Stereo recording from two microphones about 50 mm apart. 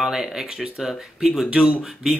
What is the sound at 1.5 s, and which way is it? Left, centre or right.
Speech, right.